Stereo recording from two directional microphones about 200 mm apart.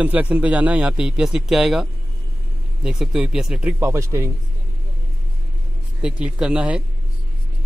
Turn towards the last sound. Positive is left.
turn(degrees=-5)  # may be behind; listen again after turning